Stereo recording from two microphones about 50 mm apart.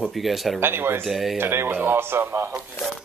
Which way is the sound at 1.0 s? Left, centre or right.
Centre.